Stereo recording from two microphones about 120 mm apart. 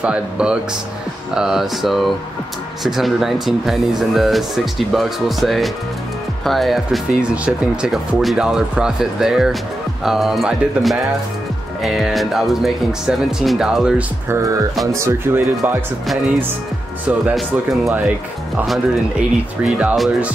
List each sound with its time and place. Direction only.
0.0 s speech: 10° right (ahead or behind)
14.3 s speech: 25° right (ahead or behind)
18.7 s speech: 5° right (ahead or behind)